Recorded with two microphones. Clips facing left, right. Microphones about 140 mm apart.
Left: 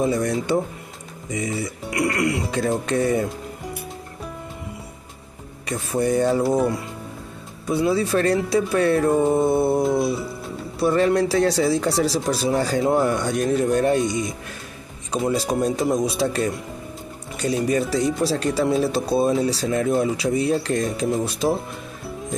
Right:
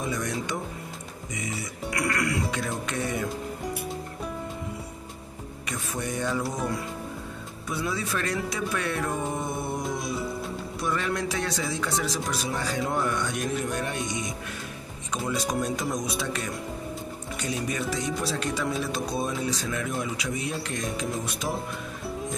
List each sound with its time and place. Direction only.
0.0 s speech: 35° left (ahead or behind)
5.7 s speech: 35° left (ahead or behind)
7.6 s speech: 30° left (ahead or behind)
15.2 s speech: 30° left (ahead or behind)
17.6 s speech: 35° left (ahead or behind)